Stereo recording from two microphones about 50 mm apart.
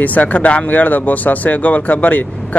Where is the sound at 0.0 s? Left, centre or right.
Left.